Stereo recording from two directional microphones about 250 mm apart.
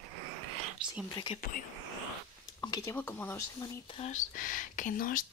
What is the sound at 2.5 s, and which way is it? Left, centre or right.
Speech, centre.